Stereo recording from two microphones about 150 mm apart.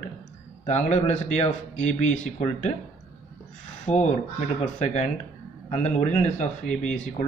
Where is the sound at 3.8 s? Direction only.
50° left (ahead or behind).